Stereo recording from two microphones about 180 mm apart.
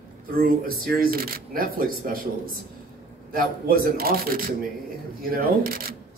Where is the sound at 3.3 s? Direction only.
55° right (ahead or behind).